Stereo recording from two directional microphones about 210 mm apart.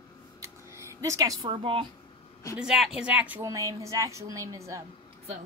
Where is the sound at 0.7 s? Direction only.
15° right (ahead or behind).